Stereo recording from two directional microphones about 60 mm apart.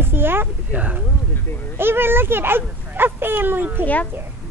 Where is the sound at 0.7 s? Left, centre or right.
Right.